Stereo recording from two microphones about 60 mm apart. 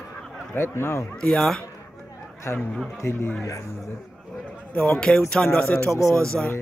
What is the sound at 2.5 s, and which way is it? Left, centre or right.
Speech, left.